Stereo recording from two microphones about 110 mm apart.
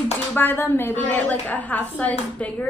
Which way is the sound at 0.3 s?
20° left (ahead or behind).